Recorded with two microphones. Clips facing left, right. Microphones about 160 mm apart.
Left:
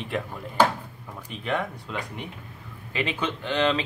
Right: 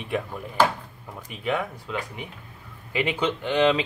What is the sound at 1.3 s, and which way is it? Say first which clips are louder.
Speech: right 1 dB; 5° right (ahead or behind).